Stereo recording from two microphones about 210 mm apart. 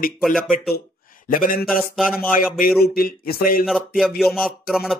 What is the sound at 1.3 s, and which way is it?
Speech, 40° left (ahead or behind).